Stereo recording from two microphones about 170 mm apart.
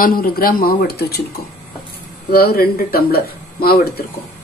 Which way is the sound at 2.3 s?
60° left (ahead or behind).